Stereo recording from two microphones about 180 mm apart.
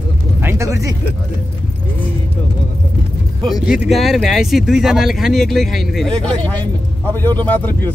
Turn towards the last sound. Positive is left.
turn(degrees=10)  # may be behind; listen again after turning